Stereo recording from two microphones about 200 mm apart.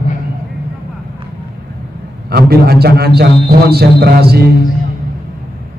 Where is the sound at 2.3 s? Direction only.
50° right (ahead or behind).